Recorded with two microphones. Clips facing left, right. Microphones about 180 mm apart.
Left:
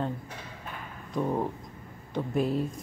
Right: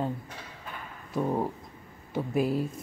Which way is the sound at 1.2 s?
10° right (ahead or behind).